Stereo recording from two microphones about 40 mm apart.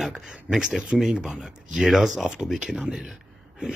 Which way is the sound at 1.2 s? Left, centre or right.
Centre.